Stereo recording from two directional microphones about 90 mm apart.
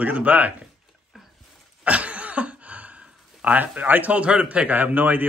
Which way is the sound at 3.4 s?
15° right (ahead or behind).